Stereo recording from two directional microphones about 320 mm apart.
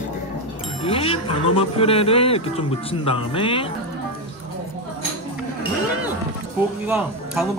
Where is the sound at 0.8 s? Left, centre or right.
Centre.